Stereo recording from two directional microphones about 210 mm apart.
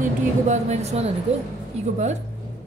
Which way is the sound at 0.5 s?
30° right (ahead or behind).